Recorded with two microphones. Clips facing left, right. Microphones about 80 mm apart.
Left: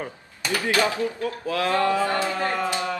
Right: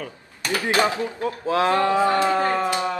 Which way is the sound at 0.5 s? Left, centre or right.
Right.